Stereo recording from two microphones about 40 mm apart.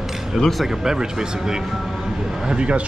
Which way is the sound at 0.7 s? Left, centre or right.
Centre.